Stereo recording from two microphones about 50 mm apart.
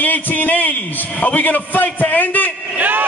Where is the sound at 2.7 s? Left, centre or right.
Right.